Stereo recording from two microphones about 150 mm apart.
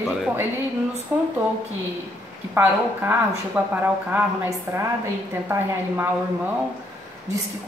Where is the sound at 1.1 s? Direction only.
10° right (ahead or behind).